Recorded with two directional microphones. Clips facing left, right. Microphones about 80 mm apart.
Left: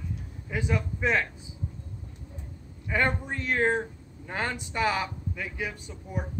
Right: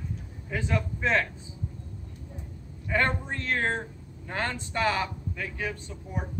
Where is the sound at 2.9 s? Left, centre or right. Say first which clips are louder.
Even; centre.